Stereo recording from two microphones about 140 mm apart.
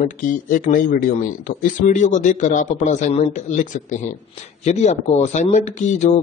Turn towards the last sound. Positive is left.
turn(degrees=55)  # may be behind; listen again after turning